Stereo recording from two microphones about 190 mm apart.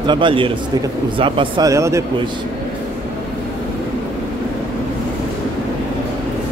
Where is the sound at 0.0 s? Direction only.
25° right (ahead or behind).